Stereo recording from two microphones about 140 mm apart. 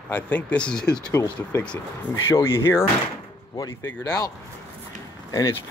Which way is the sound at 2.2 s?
20° left (ahead or behind).